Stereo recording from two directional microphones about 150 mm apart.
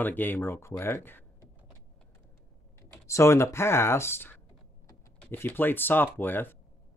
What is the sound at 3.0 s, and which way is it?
Speech, 20° left (ahead or behind).